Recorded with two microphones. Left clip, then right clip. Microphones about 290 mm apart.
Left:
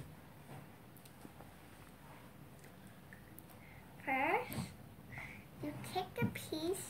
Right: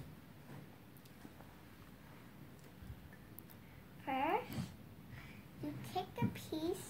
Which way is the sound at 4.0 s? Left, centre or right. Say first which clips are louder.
Left 2 dB; centre.